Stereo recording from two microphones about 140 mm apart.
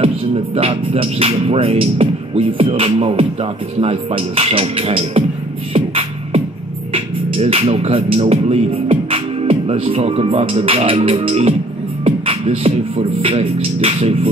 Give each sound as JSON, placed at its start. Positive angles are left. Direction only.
{"t": 0.0, "sound": "speech", "side_deg": -45}
{"t": 5.7, "sound": "music", "side_deg": -45}
{"t": 12.0, "sound": "beatboxing", "side_deg": -45}